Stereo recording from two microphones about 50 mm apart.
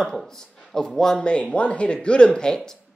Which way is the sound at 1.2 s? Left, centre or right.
Left.